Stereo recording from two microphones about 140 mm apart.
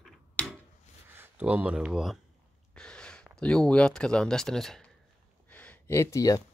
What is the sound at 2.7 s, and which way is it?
Speech, 5° left (ahead or behind).